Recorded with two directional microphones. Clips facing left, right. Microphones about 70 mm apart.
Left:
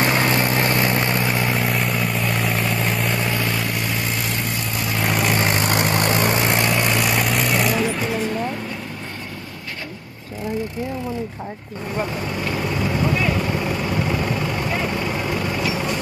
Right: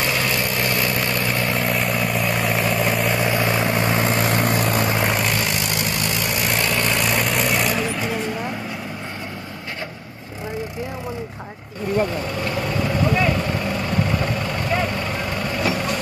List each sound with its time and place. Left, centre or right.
0.0 s vehicle: left
1.3 s vehicle: centre
3.3 s vehicle: right
4.1 s vehicle: right
5.0 s vehicle: centre
5.4 s vehicle: left
6.5 s vehicle: centre
6.9 s vehicle: centre